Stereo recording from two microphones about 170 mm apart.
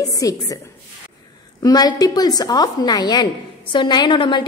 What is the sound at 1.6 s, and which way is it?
A woman's voice, 20° left (ahead or behind).